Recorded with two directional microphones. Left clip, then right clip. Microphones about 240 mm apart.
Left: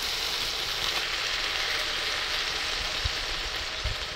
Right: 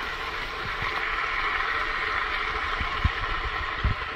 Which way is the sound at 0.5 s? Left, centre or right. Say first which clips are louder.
Even; left.